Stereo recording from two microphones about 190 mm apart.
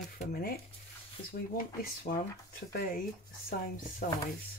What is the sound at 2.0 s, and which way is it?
Speech, 50° left (ahead or behind).